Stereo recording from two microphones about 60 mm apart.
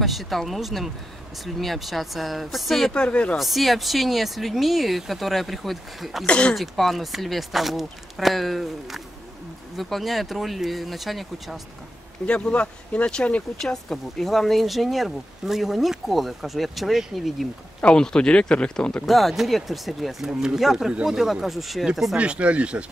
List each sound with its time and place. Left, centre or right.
0.0 s speech: centre
2.9 s speech: centre
3.3 s speech: centre
6.2 s speech: centre
6.5 s speech: centre
12.3 s speech: centre
13.6 s speech: centre
17.7 s speech: centre
19.0 s speech: centre
22.1 s speech: centre